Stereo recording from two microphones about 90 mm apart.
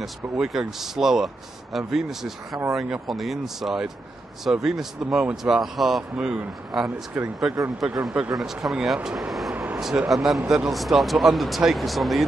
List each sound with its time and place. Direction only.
0.0 s speech: 5° right (ahead or behind)